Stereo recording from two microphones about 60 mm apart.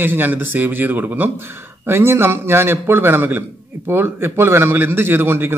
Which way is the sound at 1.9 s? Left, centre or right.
Right.